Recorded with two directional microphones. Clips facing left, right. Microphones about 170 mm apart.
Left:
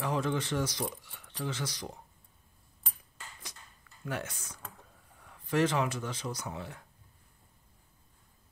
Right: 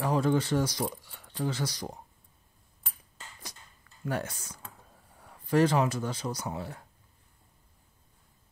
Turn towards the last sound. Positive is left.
turn(degrees=-35)  # may be behind; listen again after turning